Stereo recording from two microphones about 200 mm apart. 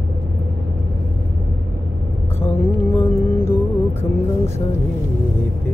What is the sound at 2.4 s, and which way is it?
Mantra, 10° left (ahead or behind).